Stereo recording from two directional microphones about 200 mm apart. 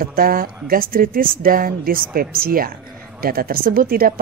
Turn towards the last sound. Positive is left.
turn(degrees=-45)  # may be behind; listen again after turning